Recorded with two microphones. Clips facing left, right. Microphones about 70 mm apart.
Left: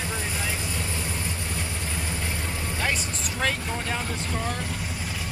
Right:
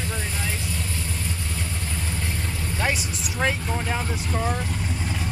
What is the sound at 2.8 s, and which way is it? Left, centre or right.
Speech, centre.